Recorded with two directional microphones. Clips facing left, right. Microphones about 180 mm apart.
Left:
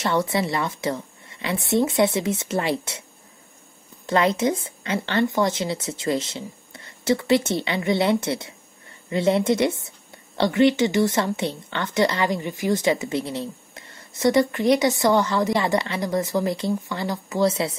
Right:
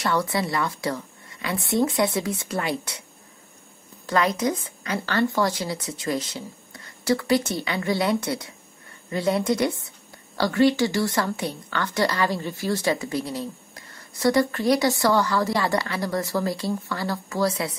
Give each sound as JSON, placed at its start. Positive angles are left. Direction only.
{"t": 0.0, "sound": "a woman's voice", "side_deg": 25}
{"t": 4.0, "sound": "a woman's voice", "side_deg": 25}